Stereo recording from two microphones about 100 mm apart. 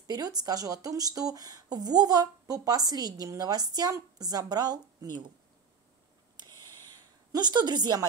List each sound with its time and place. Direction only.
0.0 s speech: 40° right (ahead or behind)
7.3 s a woman's voice: 45° right (ahead or behind)